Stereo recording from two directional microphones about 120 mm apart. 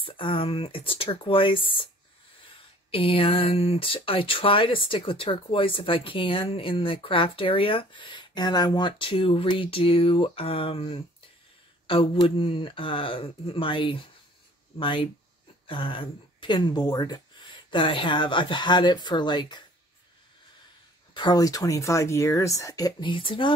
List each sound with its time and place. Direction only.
0.0 s speech: 45° left (ahead or behind)
2.9 s speech: 50° left (ahead or behind)
21.1 s speech: 35° left (ahead or behind)